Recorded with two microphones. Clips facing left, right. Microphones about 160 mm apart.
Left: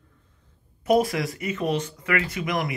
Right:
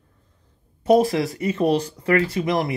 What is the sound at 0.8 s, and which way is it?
Speech, 30° right (ahead or behind).